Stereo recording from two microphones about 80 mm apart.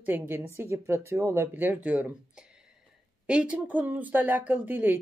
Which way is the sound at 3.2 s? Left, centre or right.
Centre.